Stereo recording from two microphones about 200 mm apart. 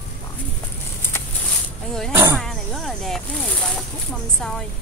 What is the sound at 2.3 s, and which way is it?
Snake, centre (ahead or behind).